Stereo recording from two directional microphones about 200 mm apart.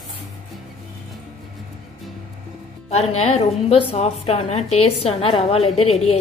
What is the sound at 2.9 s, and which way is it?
A woman's voice, 30° left (ahead or behind).